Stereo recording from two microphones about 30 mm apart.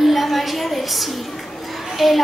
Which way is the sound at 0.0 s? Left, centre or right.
Centre.